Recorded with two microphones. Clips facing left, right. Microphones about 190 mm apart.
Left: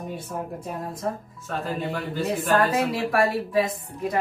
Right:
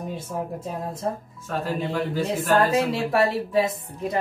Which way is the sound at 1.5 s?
Centre (ahead or behind).